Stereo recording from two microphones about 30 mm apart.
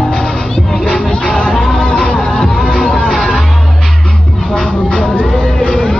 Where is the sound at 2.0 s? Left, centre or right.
Left.